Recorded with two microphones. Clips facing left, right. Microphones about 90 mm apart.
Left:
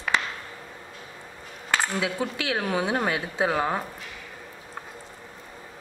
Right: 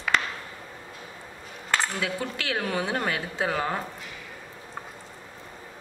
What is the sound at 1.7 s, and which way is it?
A woman's voice, 15° left (ahead or behind).